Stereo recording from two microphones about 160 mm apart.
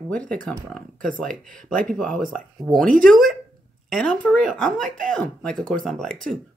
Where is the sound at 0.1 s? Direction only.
5° left (ahead or behind).